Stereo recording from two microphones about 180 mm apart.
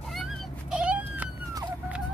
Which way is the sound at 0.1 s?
Centre (ahead or behind).